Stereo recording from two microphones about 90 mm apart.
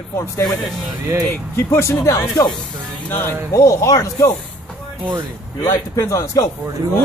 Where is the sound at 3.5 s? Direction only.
40° left (ahead or behind).